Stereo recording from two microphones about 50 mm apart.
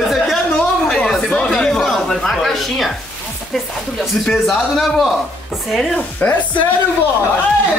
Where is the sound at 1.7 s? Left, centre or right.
Centre.